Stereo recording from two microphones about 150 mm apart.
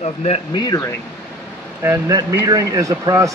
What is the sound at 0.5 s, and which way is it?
Speech, 25° left (ahead or behind).